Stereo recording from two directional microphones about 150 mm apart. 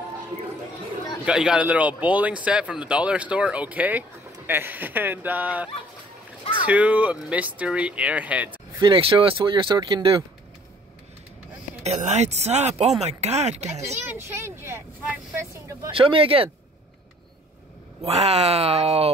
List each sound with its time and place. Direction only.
1.2 s speech: 5° right (ahead or behind)
6.7 s speech: 10° right (ahead or behind)
8.8 s speech: 35° right (ahead or behind)
11.8 s speech: 50° right (ahead or behind)
14.0 s speech: 15° right (ahead or behind)
15.9 s speech: 35° right (ahead or behind)
18.0 s speech: 40° right (ahead or behind)